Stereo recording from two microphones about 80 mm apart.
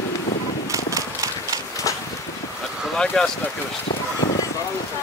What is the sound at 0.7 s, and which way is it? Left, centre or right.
Clip-clop, right.